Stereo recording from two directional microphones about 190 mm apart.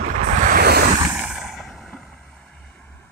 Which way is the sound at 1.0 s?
10° right (ahead or behind).